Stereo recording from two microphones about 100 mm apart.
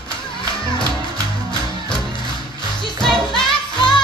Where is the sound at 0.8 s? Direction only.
35° right (ahead or behind).